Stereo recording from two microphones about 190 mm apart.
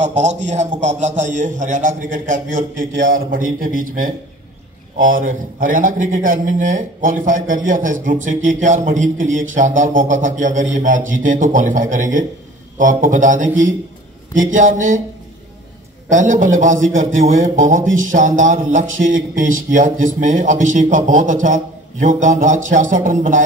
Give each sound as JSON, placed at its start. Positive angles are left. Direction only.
{"t": 0.0, "sound": "a man's voice", "side_deg": -35}
{"t": 2.9, "sound": "a man's voice", "side_deg": -80}
{"t": 3.3, "sound": "a man's voice", "side_deg": -45}
{"t": 16.1, "sound": "a man's voice", "side_deg": -45}